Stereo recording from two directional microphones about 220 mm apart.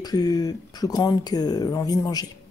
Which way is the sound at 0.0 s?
15° left (ahead or behind).